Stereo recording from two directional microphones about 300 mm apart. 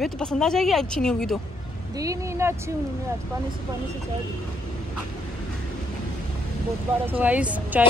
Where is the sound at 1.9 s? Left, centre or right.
Centre.